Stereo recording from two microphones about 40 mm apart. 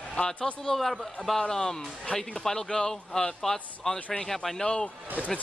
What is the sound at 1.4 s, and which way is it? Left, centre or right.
Speech, centre.